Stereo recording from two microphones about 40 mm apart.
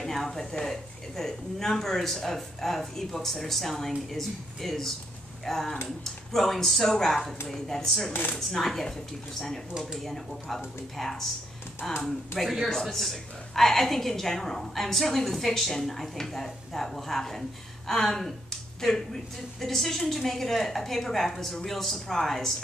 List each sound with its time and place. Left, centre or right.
0.0 s a woman's voice: centre
8.1 s speech: left
8.4 s a woman's voice: centre
10.0 s a woman's voice: centre
19.6 s a woman's voice: centre